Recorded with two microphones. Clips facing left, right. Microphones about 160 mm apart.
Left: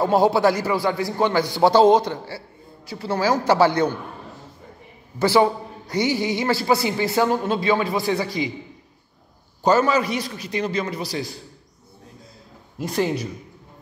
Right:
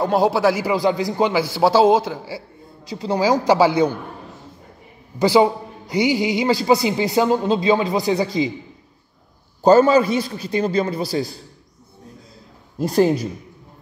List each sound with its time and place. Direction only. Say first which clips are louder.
0.0 s speech: even; centre (ahead or behind)
0.7 s a man's voice: right 3 dB; 15° right (ahead or behind)
2.9 s a man's voice: right 3 dB; 15° right (ahead or behind)
5.2 s a woman's voice: right 2 dB; 15° right (ahead or behind)
9.6 s a man's voice: right 6 dB; 30° right (ahead or behind)
12.7 s a man's voice: right 7 dB; 40° right (ahead or behind)